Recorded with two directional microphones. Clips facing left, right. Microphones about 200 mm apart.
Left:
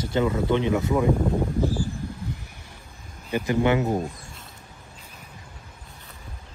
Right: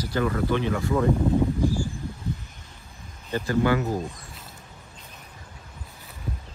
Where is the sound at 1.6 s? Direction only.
15° right (ahead or behind).